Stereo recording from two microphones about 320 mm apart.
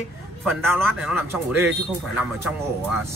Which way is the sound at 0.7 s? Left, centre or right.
Centre.